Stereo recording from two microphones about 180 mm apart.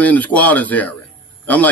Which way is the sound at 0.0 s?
10° left (ahead or behind).